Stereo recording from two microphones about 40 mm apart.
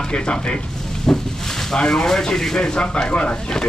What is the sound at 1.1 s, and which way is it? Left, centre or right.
Speech, centre.